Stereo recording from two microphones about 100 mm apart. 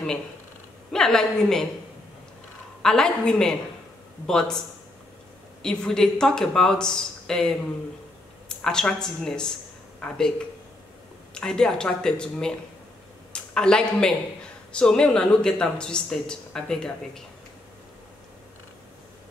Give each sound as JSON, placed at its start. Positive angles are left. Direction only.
{"t": 0.9, "sound": "speech", "side_deg": 5}
{"t": 2.8, "sound": "speech", "side_deg": 5}
{"t": 5.6, "sound": "speech", "side_deg": 5}
{"t": 11.3, "sound": "speech", "side_deg": 5}